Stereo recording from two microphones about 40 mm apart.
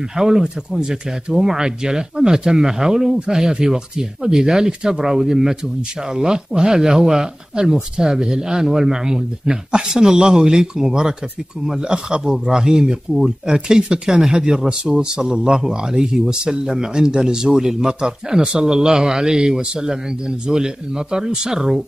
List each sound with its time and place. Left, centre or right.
0.1 s speech: centre